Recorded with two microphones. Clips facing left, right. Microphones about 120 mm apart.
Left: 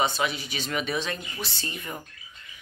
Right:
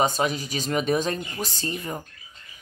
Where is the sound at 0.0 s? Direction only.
40° right (ahead or behind).